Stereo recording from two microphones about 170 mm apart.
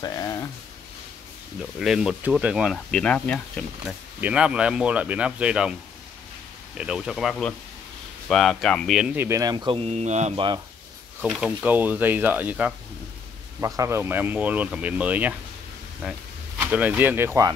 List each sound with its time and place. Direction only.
0.0 s speech: 20° left (ahead or behind)
1.8 s speech: centre (ahead or behind)
4.2 s speech: 5° right (ahead or behind)
6.8 s speech: 5° right (ahead or behind)
9.1 s speech: 15° right (ahead or behind); by 10.4 s 45° right (ahead or behind)
11.1 s speech: 5° right (ahead or behind)